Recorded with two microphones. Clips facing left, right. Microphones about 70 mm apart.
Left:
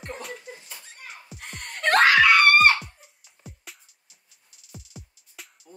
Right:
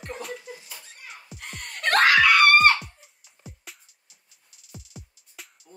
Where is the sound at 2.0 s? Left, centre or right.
Left.